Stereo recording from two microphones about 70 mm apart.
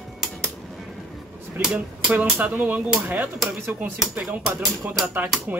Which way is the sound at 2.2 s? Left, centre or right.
Centre.